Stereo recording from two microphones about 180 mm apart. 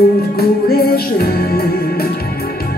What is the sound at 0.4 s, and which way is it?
Music, 60° left (ahead or behind).